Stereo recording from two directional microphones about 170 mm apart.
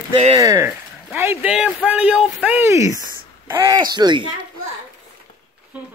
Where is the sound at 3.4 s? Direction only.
20° right (ahead or behind).